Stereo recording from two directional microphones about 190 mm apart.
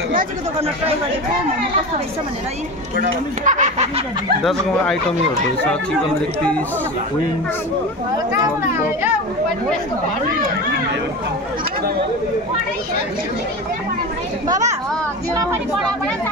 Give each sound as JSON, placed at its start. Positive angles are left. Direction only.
{"t": 3.0, "sound": "speech", "side_deg": -40}
{"t": 4.4, "sound": "speech", "side_deg": 0}
{"t": 8.3, "sound": "speech", "side_deg": -15}